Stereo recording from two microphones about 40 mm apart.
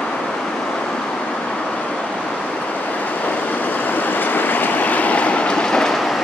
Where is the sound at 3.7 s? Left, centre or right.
Left; by 6.2 s centre.